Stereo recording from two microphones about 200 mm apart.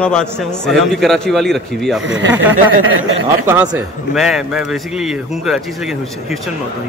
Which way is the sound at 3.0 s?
10° right (ahead or behind).